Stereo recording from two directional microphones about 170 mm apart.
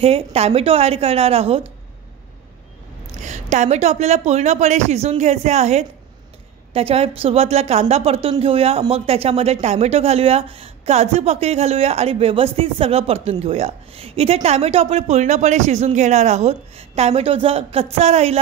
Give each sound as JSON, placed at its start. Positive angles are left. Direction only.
{"t": 0.0, "sound": "speech", "side_deg": -35}
{"t": 3.2, "sound": "speech", "side_deg": -45}